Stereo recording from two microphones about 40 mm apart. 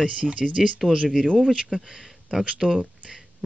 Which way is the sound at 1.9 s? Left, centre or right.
Centre.